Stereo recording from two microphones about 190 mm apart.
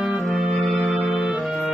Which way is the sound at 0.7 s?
10° right (ahead or behind).